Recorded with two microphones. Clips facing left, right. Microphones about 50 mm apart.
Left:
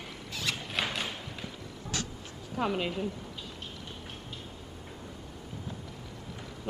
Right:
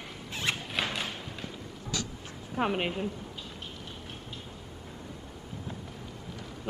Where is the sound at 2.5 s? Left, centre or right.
Right.